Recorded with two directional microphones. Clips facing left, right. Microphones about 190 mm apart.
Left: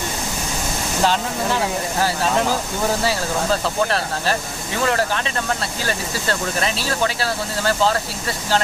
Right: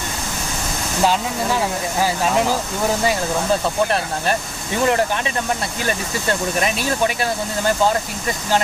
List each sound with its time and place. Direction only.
1.0 s speech: 10° right (ahead or behind)
4.8 s speech: 15° right (ahead or behind)